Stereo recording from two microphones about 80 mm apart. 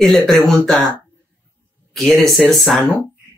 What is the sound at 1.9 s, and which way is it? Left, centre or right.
Speech, centre.